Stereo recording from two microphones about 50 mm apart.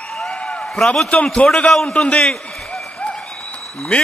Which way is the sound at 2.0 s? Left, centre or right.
Centre.